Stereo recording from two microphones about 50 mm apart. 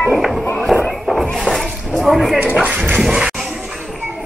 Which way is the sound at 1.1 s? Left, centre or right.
Centre.